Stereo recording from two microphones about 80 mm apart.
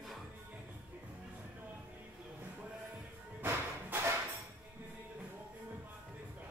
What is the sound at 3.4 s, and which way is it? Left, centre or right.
Music, right.